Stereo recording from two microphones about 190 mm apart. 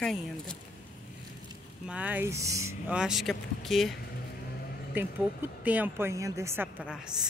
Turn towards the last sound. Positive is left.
turn(degrees=-5)  # may be behind; listen again after turning